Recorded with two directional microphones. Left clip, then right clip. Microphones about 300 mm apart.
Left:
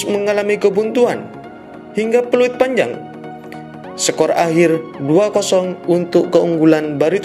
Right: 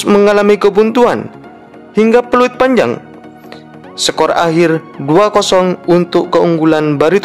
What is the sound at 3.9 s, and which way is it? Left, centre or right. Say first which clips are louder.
Speech: right 3 dB; centre.